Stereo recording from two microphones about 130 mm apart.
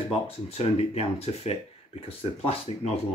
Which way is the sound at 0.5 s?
50° left (ahead or behind).